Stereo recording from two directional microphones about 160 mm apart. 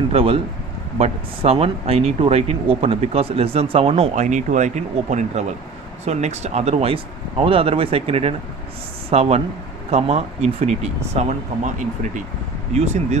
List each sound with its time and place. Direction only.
0.1 s speech: 35° right (ahead or behind)